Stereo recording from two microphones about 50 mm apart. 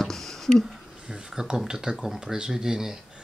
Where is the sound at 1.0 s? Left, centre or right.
Centre.